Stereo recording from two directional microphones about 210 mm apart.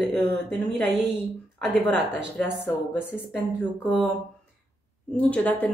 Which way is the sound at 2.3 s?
5° right (ahead or behind).